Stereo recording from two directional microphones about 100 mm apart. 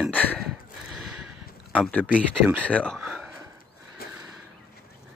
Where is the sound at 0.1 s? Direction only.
15° left (ahead or behind).